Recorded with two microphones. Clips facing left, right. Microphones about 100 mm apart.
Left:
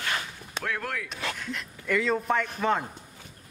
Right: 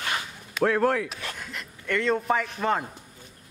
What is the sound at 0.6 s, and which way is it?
Speech, 35° right (ahead or behind).